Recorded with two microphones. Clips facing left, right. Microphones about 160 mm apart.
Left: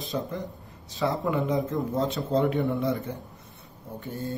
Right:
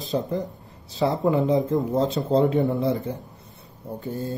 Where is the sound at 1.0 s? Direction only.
20° right (ahead or behind).